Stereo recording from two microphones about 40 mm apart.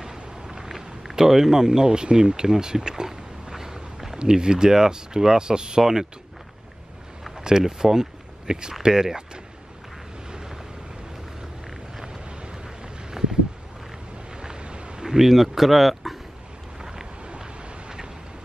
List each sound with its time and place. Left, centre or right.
0.0 s vehicle: centre
0.7 s a sound: centre
4.2 s speech: right
7.4 s speech: centre
10.3 s vehicle: centre
12.0 s vehicle: right
13.2 s a sound: centre
14.3 s wind noise: centre
15.0 s speech: centre
16.8 s vehicle: centre